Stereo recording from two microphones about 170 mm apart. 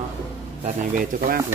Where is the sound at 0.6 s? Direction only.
50° right (ahead or behind).